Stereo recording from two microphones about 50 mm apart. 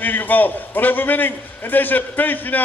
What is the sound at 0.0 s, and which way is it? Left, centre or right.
A man's voice, left.